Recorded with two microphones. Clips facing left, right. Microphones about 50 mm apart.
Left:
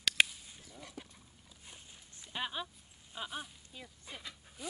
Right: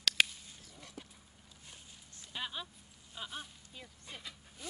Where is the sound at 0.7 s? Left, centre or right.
Centre.